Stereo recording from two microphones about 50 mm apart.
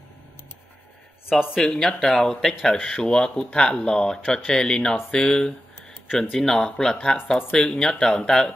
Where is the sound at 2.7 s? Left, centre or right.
Left.